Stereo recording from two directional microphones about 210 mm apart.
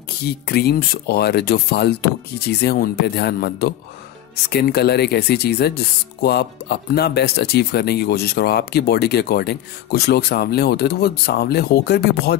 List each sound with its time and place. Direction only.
0.2 s speech: 50° left (ahead or behind)